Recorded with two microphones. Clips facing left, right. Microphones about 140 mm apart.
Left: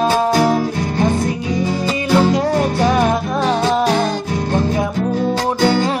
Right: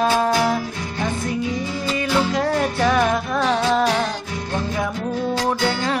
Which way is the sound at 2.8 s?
25° left (ahead or behind).